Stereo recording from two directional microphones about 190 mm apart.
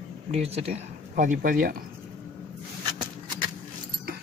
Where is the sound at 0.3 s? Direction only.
35° right (ahead or behind); by 1.8 s 50° right (ahead or behind).